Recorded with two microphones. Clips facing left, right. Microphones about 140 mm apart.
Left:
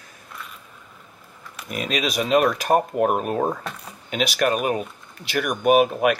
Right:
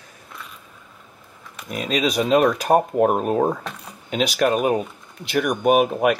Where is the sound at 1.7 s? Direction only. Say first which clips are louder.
Right 3 dB; centre (ahead or behind).